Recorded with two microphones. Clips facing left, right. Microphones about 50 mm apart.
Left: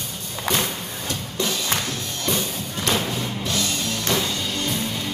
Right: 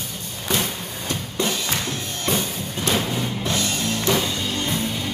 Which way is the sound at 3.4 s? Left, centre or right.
Right.